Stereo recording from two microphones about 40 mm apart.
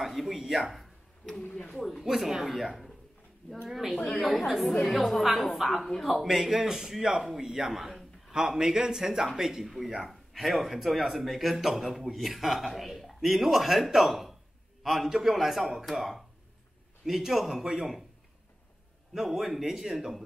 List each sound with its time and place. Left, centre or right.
0.0 s speech: centre
1.5 s speech: left
1.8 s a man's voice: centre
2.0 s a man's voice: centre
6.1 s a man's voice: centre
19.1 s a man's voice: centre